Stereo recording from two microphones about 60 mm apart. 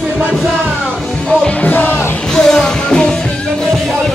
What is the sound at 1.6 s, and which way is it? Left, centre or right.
Music, left.